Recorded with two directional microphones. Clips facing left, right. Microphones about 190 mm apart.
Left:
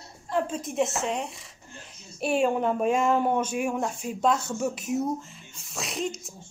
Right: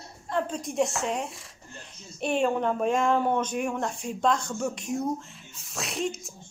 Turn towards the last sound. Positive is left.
turn(degrees=0)  # may be behind; listen again after turning